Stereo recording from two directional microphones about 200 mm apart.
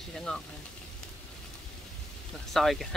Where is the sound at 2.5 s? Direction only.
Centre (ahead or behind).